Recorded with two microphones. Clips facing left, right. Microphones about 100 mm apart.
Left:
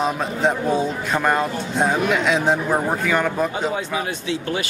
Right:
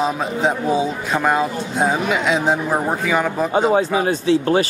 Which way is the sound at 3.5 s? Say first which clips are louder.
Right 7 dB; 35° right (ahead or behind).